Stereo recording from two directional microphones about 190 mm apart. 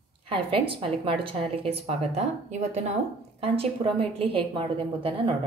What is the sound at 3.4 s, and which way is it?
A woman's voice, 30° right (ahead or behind).